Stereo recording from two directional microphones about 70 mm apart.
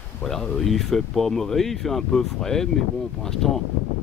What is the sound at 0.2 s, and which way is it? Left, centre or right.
Speech, centre.